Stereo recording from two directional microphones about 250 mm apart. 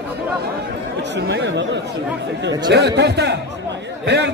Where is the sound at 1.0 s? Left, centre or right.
Right.